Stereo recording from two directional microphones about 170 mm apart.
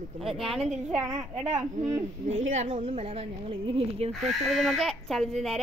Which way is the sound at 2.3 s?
40° right (ahead or behind).